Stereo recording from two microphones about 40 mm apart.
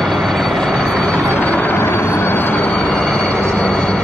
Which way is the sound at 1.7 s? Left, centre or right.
Left.